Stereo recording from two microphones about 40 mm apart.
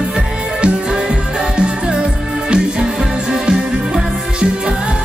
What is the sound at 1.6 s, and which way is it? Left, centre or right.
Music, right.